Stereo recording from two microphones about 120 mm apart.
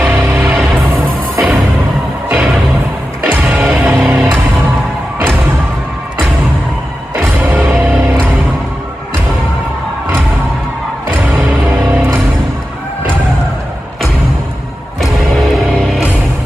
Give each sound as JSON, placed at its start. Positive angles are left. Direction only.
{"t": 0.0, "sound": "music", "side_deg": -20}
{"t": 7.2, "sound": "music", "side_deg": -15}
{"t": 11.1, "sound": "music", "side_deg": -15}